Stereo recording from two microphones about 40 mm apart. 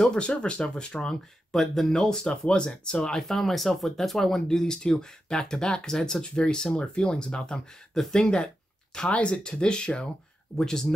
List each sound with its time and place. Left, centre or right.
0.2 s speech: left
1.5 s speech: centre
2.0 s speech: centre
3.2 s speech: centre
6.3 s speech: left
10.5 s speech: centre